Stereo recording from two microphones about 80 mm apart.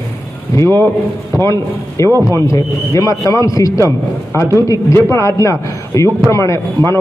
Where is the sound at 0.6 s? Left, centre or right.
Left.